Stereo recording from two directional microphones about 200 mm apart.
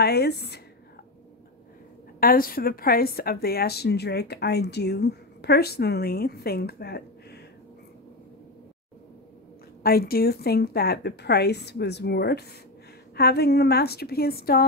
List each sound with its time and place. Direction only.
0.0 s a woman's voice: 55° left (ahead or behind)
2.1 s a woman's voice: 45° left (ahead or behind)
9.8 s a woman's voice: 50° left (ahead or behind)